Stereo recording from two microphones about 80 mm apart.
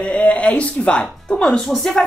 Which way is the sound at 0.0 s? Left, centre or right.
Centre.